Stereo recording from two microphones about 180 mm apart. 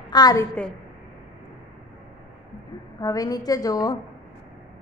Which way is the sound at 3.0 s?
20° left (ahead or behind).